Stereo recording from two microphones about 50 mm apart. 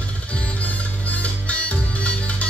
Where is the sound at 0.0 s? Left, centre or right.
Left.